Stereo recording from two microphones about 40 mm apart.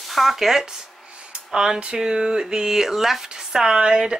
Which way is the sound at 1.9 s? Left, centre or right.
Centre.